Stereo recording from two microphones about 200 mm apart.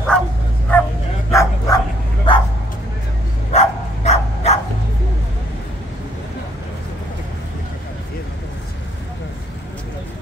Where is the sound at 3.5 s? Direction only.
35° left (ahead or behind).